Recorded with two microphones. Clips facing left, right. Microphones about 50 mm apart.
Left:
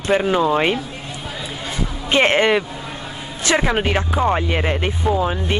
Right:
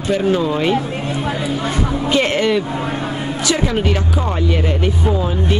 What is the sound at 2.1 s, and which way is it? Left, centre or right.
Speech, left.